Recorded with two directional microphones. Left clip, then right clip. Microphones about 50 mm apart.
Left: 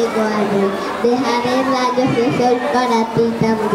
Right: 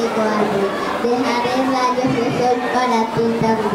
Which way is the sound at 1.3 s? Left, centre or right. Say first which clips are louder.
Left 2 dB; left.